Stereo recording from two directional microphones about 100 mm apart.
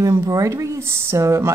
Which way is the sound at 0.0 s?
30° right (ahead or behind).